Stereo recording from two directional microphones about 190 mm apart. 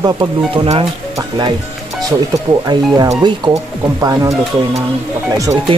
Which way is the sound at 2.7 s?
20° right (ahead or behind).